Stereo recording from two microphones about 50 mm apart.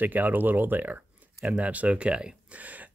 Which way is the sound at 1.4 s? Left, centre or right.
Right.